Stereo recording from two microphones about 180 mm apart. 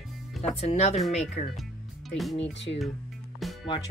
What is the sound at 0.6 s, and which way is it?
Speech, 35° left (ahead or behind).